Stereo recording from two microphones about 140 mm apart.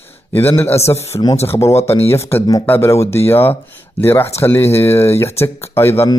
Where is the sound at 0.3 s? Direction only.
15° left (ahead or behind).